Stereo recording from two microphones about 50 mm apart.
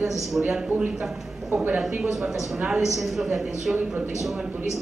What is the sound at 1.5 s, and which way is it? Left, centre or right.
Speech, right.